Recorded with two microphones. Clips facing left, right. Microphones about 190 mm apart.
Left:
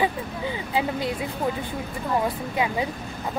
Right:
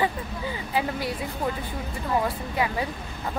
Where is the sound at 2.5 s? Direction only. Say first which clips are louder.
Left 1 dB; 20° left (ahead or behind).